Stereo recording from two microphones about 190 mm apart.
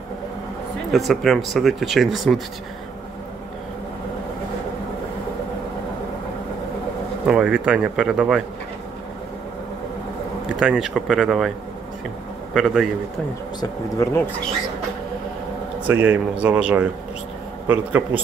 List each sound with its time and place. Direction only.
0.9 s speech: centre (ahead or behind)
7.2 s speech: 5° right (ahead or behind)
10.5 s speech: 5° right (ahead or behind)
12.5 s speech: centre (ahead or behind)
13.6 s speech: 15° left (ahead or behind)
15.9 s speech: 10° right (ahead or behind)